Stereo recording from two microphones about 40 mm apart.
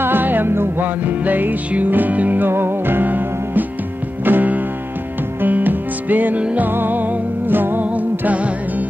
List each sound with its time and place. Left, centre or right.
0.0 s music: right
0.5 s music: right
1.0 s music: right
2.5 s music: right
7.9 s music: right